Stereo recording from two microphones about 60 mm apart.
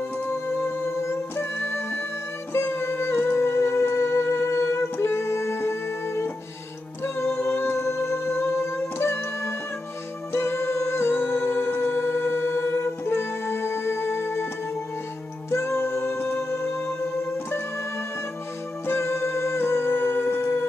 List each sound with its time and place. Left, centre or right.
0.2 s music: left
7.7 s music: left
15.5 s music: left
18.9 s music: left